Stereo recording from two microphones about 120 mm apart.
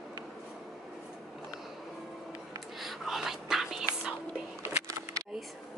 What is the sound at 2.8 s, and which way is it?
Whispering, centre (ahead or behind).